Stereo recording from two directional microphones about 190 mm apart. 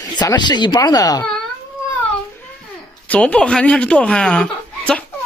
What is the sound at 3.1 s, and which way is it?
Speech, 5° left (ahead or behind).